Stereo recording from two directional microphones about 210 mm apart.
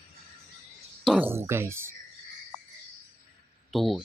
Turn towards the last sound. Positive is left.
turn(degrees=0)  # may be behind; listen again after turning